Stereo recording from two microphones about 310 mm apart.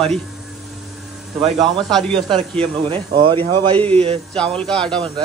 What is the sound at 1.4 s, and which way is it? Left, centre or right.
Speech, centre.